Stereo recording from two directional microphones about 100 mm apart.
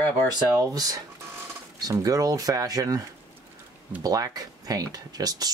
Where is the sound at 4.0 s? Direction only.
40° right (ahead or behind).